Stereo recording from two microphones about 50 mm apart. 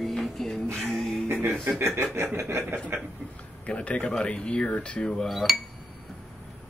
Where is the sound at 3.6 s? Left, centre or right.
Left.